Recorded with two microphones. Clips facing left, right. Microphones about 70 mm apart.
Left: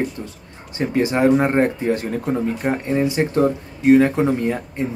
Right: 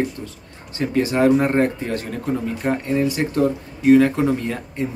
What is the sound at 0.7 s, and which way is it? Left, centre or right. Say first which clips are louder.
Speech: even; left.